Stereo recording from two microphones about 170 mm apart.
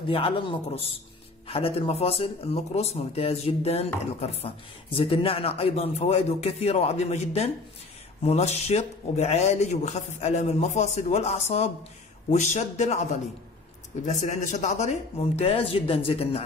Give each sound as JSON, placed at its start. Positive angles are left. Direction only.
{"t": 0.1, "sound": "a man's voice", "side_deg": 30}